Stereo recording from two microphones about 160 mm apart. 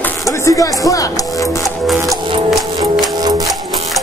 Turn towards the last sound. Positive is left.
turn(degrees=-25)  # may be behind; listen again after turning